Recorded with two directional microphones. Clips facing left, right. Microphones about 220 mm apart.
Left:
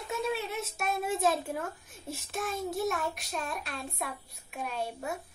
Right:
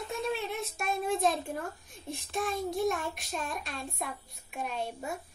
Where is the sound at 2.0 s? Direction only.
5° left (ahead or behind).